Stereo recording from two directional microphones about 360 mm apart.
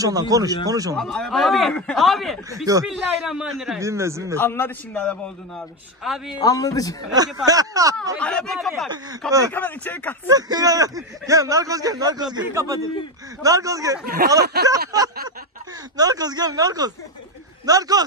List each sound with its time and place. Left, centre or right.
0.0 s speech: centre
0.9 s a man's voice: centre
4.4 s a man's voice: centre
6.4 s a man's voice: centre
7.2 s speech: centre
8.2 s a man's voice: centre
10.3 s speech: centre
14.0 s speech: right
16.0 s speech: centre